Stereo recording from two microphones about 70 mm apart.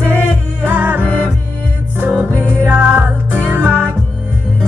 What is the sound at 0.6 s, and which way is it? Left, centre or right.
Music, right.